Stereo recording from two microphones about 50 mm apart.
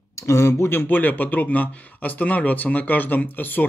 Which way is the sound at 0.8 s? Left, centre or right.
Left.